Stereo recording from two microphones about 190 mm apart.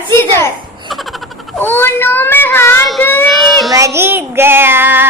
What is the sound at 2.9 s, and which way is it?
Speech, centre (ahead or behind).